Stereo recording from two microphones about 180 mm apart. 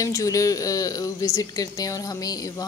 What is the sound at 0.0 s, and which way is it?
A woman's voice, 20° left (ahead or behind).